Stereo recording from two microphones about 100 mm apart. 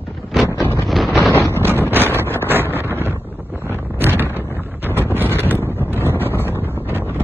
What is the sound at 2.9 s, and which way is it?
Wind noise, 25° right (ahead or behind).